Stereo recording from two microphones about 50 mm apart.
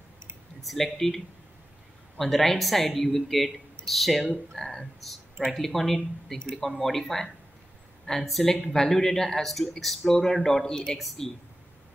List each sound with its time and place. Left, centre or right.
0.7 s speech: centre
11.0 s speech: centre